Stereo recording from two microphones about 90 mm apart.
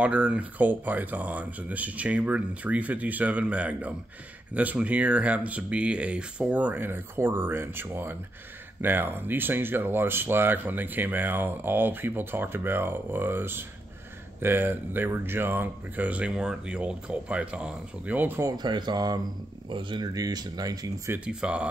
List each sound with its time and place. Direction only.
0.0 s speech: 15° right (ahead or behind)
18.6 s speech: 55° right (ahead or behind)
19.7 s speech: 65° right (ahead or behind)
20.2 s speech: 45° right (ahead or behind)
21.2 s speech: 10° right (ahead or behind)